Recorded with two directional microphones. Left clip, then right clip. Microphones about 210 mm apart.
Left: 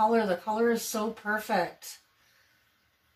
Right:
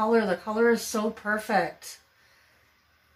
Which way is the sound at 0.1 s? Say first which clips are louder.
Right 2 dB; 10° right (ahead or behind).